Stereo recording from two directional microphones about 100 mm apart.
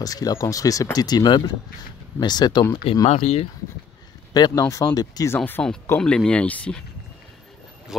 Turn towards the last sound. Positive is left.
turn(degrees=10)  # may be behind; listen again after turning